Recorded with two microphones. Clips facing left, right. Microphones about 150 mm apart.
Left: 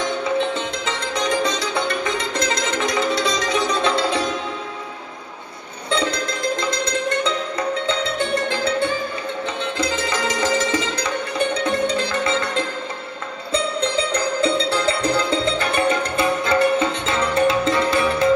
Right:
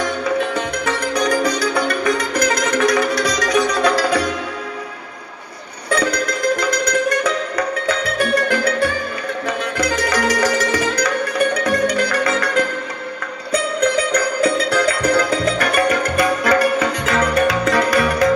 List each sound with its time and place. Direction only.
0.0 s music: 25° left (ahead or behind)
5.9 s music: 25° left (ahead or behind)